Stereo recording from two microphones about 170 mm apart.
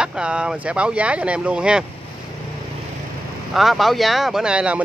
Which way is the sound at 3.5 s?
Centre (ahead or behind).